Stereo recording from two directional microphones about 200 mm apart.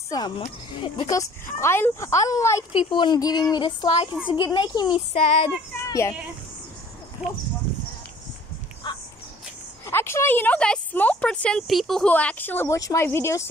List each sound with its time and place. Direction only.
0.4 s speech: 25° left (ahead or behind)
5.8 s speech: 15° left (ahead or behind)
7.2 s speech: 5° right (ahead or behind)
8.8 s crow: 20° left (ahead or behind)
9.8 s speech: 10° left (ahead or behind)